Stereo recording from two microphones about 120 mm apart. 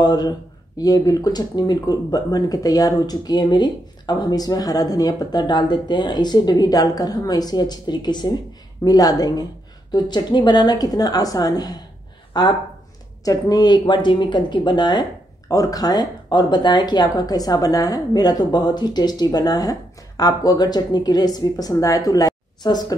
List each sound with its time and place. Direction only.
0.0 s speech: 35° left (ahead or behind)